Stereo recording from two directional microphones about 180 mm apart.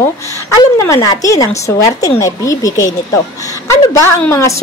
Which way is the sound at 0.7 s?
15° left (ahead or behind).